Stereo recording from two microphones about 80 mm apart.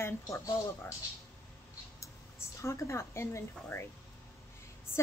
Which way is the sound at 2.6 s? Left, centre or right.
Left.